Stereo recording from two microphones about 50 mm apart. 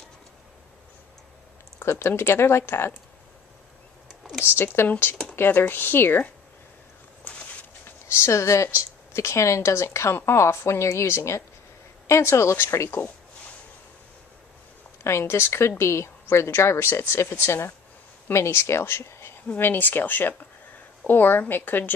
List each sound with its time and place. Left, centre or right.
1.9 s speech: left
4.8 s speech: left
7.3 s a sound: left
7.8 s a woman's voice: left
10.1 s a woman's voice: left
15.0 s speech: left
19.6 s speech: left